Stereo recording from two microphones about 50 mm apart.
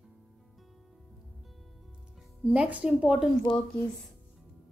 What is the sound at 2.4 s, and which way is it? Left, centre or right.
Speech, right.